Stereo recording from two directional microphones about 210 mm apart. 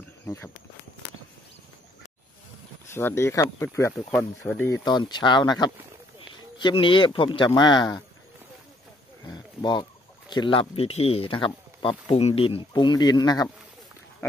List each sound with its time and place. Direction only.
0.3 s speech: 15° left (ahead or behind)
2.9 s speech: 10° left (ahead or behind)
4.8 s speech: 20° left (ahead or behind)
9.3 s a sound: 20° left (ahead or behind)
10.3 s speech: 25° left (ahead or behind)